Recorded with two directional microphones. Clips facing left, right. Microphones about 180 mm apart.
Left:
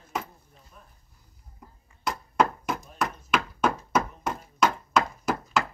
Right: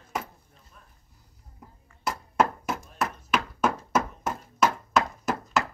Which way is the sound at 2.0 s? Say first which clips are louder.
Even; 5° right (ahead or behind).